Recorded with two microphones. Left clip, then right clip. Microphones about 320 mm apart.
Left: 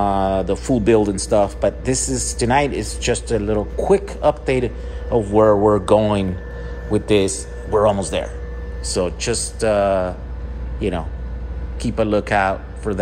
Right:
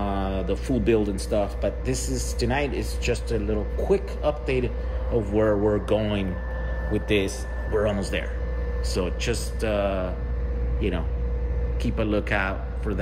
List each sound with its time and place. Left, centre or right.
0.0 s a man's voice: centre
7.2 s speech: centre